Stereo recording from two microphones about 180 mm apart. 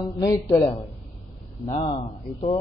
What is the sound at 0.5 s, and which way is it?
Speech, 20° left (ahead or behind).